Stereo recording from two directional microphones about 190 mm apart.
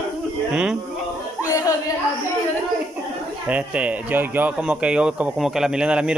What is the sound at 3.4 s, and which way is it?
Speech, 5° right (ahead or behind).